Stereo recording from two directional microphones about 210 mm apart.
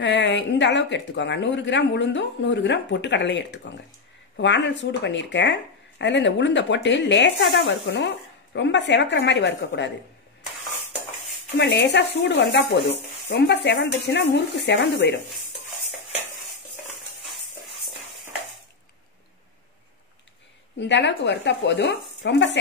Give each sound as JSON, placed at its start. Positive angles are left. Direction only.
{"t": 0.0, "sound": "speech", "side_deg": 55}
{"t": 11.5, "sound": "speech", "side_deg": 55}
{"t": 20.8, "sound": "speech", "side_deg": 55}